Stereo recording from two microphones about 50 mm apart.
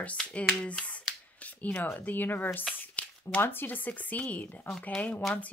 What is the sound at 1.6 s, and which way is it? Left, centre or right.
Speech, left.